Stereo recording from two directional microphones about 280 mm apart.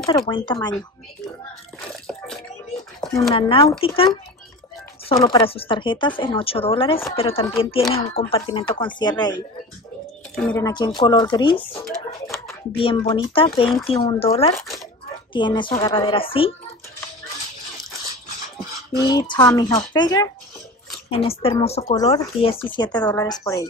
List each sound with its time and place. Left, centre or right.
0.0 s speech: centre
2.0 s water: centre
3.0 s a sound: centre
3.3 s speech: centre
19.0 s speech: centre